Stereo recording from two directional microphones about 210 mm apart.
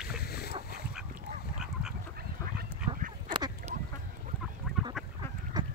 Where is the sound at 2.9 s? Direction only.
25° right (ahead or behind).